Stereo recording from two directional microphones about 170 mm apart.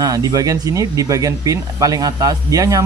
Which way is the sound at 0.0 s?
20° right (ahead or behind).